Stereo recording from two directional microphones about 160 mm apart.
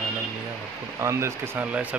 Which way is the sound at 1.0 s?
15° right (ahead or behind).